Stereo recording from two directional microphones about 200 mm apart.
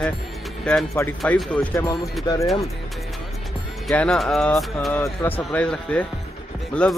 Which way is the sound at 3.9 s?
5° left (ahead or behind).